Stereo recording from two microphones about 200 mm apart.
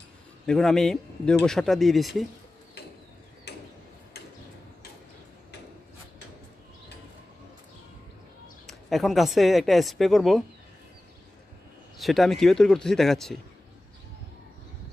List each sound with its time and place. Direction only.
0.5 s speech: centre (ahead or behind)
3.5 s a sound: 55° left (ahead or behind)
8.6 s speech: centre (ahead or behind)
12.0 s speech: centre (ahead or behind)